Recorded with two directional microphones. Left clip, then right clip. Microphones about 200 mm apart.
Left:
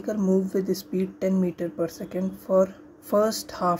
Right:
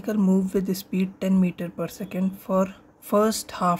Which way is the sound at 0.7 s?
30° right (ahead or behind).